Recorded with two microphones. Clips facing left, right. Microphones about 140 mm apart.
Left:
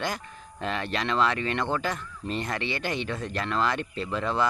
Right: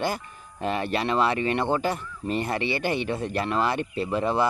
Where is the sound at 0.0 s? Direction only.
10° right (ahead or behind).